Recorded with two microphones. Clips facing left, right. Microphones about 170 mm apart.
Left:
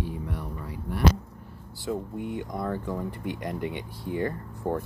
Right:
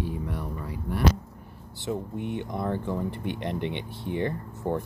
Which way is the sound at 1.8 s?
25° right (ahead or behind).